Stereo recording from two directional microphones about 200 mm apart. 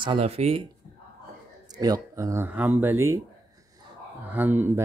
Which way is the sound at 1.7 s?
20° right (ahead or behind).